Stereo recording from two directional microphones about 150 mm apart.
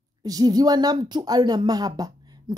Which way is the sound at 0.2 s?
25° right (ahead or behind).